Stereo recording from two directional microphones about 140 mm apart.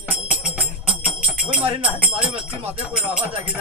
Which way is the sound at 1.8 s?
10° right (ahead or behind).